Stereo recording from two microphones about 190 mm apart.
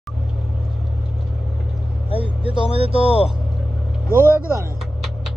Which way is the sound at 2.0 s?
30° right (ahead or behind).